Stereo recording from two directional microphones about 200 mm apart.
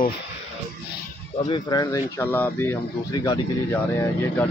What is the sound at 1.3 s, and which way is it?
Speech, 20° left (ahead or behind).